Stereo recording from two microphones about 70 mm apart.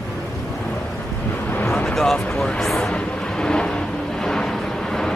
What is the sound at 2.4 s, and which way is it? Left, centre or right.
Vehicle, centre.